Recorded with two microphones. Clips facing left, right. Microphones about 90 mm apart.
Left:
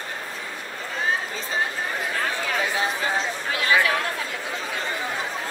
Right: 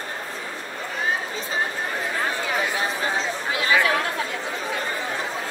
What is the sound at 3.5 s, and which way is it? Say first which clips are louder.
Chatter: even; 20° right (ahead or behind).